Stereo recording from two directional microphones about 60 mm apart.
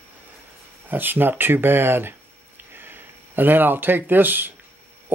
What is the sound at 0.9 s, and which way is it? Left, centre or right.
Speech, right.